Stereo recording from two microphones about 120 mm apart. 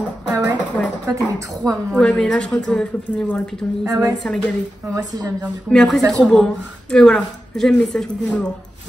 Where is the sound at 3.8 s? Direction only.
25° right (ahead or behind).